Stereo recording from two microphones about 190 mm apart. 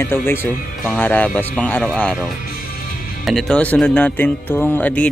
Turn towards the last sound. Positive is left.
turn(degrees=10)  # may be behind; listen again after turning